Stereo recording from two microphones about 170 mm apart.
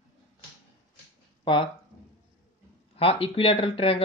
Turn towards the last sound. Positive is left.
turn(degrees=35)  # may be behind; listen again after turning